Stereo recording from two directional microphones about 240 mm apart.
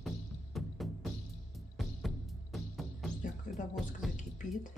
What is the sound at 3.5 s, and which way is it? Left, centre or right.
Music, left.